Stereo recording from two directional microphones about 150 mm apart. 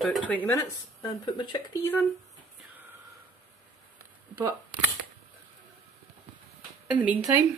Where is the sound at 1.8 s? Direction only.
15° left (ahead or behind).